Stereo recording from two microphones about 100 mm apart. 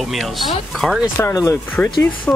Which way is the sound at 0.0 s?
Centre (ahead or behind).